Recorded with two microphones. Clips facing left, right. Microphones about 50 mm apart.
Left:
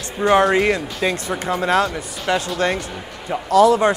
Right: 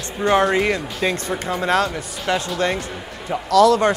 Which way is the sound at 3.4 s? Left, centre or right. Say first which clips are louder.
Left 1 dB; centre.